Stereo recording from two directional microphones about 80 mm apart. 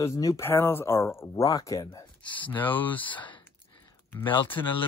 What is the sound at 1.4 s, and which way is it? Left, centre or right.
Speech, left.